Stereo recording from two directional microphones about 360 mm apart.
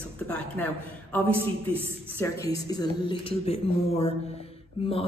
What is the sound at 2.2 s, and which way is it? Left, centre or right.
A woman's voice, centre.